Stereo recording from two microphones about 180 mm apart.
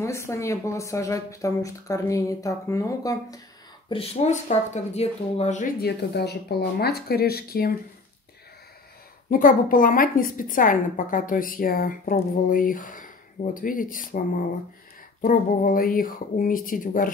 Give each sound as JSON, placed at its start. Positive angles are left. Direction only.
{"t": 0.0, "sound": "speech", "side_deg": 15}
{"t": 3.9, "sound": "speech", "side_deg": 35}
{"t": 5.8, "sound": "speech", "side_deg": 65}
{"t": 9.3, "sound": "a woman's voice", "side_deg": 50}